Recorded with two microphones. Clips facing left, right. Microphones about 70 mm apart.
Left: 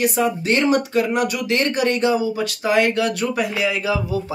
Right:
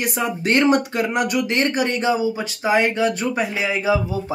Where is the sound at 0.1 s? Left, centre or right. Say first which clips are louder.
Left 1 dB; right.